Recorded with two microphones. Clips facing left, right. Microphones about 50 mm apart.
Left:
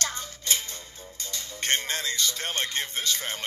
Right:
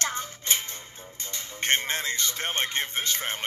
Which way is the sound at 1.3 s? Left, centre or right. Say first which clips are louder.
Right 2 dB; right.